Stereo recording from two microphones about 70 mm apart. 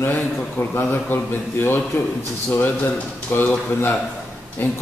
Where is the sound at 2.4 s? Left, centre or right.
Left.